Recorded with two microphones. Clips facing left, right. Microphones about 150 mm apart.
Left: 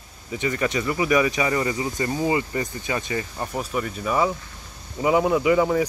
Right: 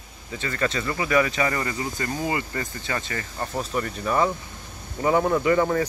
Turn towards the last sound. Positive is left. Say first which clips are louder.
# left 2 dB
turn(degrees=10)  # may be behind; listen again after turning